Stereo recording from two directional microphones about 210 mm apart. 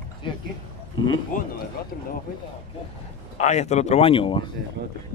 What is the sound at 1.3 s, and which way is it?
Speech, 40° left (ahead or behind).